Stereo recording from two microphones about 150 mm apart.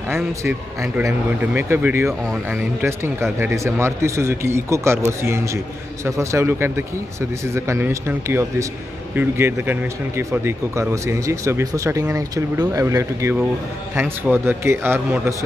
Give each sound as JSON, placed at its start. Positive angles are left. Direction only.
{"t": 0.1, "sound": "speech", "side_deg": -15}